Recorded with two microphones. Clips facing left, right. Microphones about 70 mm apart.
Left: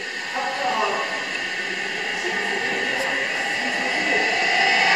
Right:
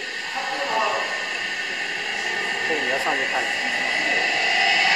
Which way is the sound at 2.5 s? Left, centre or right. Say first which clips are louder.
Even; centre.